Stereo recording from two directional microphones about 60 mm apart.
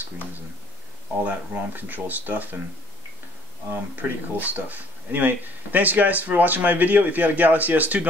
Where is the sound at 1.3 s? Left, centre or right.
Right.